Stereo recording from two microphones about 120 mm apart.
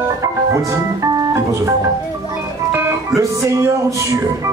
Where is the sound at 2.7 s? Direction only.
25° right (ahead or behind).